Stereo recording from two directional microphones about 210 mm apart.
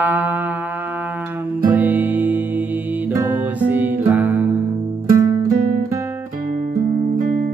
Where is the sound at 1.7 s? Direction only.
10° right (ahead or behind).